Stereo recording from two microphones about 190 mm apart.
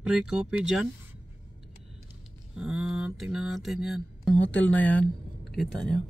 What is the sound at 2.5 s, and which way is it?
Mantra, centre (ahead or behind).